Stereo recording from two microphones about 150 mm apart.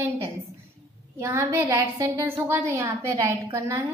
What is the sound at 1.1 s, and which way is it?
A woman's voice, 15° right (ahead or behind).